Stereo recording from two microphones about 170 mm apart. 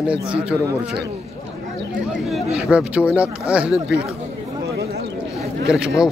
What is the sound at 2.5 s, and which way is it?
Speech, 5° right (ahead or behind).